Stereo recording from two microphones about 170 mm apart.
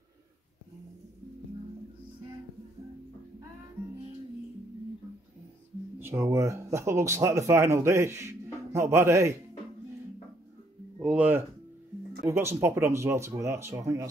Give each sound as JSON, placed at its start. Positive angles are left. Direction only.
{"t": 5.9, "sound": "speech", "side_deg": -15}
{"t": 11.0, "sound": "speech", "side_deg": -5}